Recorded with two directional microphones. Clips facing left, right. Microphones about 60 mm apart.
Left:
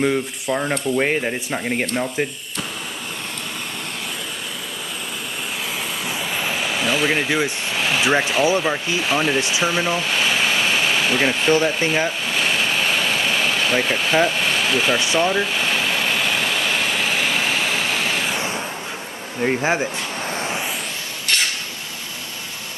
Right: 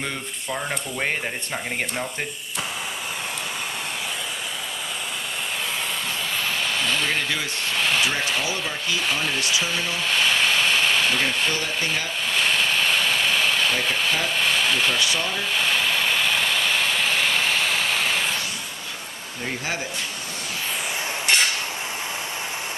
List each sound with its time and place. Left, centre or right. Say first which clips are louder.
0.0 s speech: left 10 dB; centre
6.3 s a sound: left 2 dB; centre
7.7 s speech: left 4 dB; centre
9.0 s speech: left 7 dB; centre
9.4 s speech: left 4 dB; left
9.7 s speech: left 5 dB; centre
12.3 s vehicle: left 1 dB; centre
15.0 s speech: left 5 dB; left
15.2 s a sound: left 5 dB; centre
19.4 s speech: left 9 dB; left